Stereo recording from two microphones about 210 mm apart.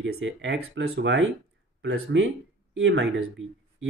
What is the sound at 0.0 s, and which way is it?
Speech, 65° right (ahead or behind).